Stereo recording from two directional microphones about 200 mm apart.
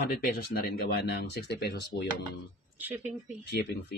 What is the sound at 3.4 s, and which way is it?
Speech, 55° left (ahead or behind).